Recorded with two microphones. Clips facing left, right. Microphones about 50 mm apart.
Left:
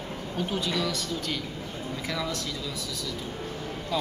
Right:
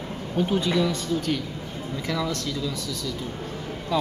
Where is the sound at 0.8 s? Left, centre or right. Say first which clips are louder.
Right 5 dB; centre.